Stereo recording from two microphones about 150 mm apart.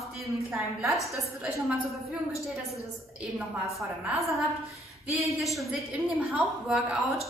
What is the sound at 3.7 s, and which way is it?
Speech, centre (ahead or behind).